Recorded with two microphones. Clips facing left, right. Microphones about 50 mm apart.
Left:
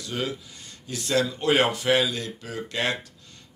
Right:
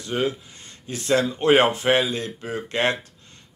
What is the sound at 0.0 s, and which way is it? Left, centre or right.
Speech, right.